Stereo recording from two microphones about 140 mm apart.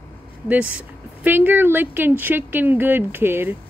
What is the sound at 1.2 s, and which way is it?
Speech, 15° right (ahead or behind).